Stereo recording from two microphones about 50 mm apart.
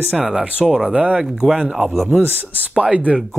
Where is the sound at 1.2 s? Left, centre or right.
Centre.